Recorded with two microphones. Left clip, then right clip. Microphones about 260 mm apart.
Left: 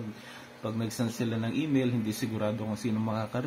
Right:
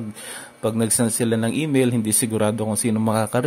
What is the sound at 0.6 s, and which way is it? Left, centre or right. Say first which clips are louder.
Speech: right 12 dB; right.